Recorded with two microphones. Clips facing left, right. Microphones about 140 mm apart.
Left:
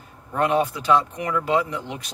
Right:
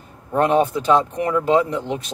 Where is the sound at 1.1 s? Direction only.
35° right (ahead or behind).